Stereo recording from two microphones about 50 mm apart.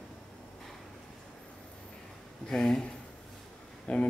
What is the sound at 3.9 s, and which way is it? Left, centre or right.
Speech, left.